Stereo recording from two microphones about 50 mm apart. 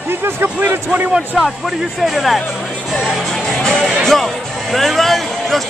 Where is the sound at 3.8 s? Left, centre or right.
Centre.